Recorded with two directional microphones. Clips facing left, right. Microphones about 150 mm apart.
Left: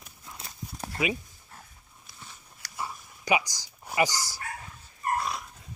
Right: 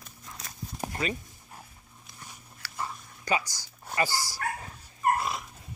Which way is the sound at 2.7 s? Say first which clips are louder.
Even; 10° left (ahead or behind).